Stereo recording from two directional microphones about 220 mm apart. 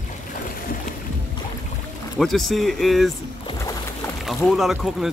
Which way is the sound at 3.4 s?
15° left (ahead or behind).